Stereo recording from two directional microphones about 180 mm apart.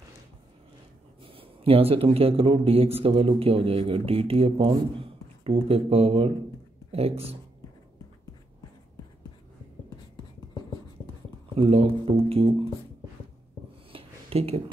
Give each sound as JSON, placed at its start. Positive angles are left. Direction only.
{"t": 1.2, "sound": "a man's voice", "side_deg": -30}
{"t": 11.5, "sound": "a man's voice", "side_deg": -30}
{"t": 13.9, "sound": "a sound", "side_deg": -35}